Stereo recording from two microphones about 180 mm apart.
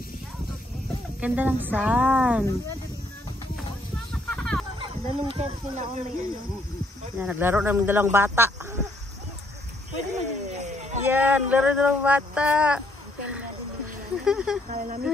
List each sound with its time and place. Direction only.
1.2 s speech: 10° right (ahead or behind)
4.1 s a sound: 5° left (ahead or behind)
4.7 s speech: 30° right (ahead or behind)
7.2 s speech: 10° right (ahead or behind)
9.9 s a sound: 40° right (ahead or behind)
11.1 s speech: 10° right (ahead or behind)
14.2 s speech: 5° right (ahead or behind)
14.7 s speech: 50° right (ahead or behind)